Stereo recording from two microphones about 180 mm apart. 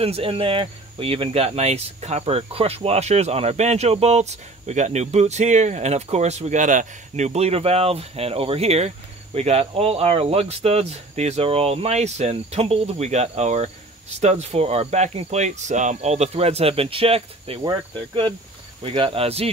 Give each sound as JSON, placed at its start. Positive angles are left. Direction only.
{"t": 0.0, "sound": "speech", "side_deg": -30}
{"t": 17.6, "sound": "cricket", "side_deg": -30}
{"t": 18.8, "sound": "speech", "side_deg": -30}